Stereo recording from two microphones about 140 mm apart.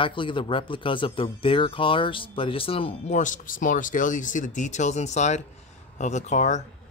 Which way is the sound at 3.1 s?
65° left (ahead or behind).